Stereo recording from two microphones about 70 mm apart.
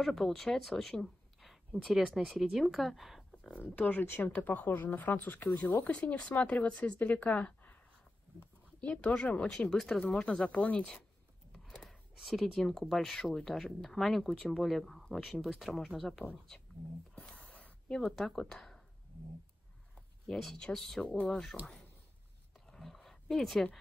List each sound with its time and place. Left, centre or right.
0.0 s a woman's voice: centre
1.9 s speech: centre
3.6 s speech: left
5.9 s speech: centre
8.8 s speech: centre
11.5 s a sound: centre
12.2 s speech: centre
17.3 s a sound: centre
20.2 s speech: centre
21.0 s speech: centre
21.3 s speech: centre
22.7 s a sound: centre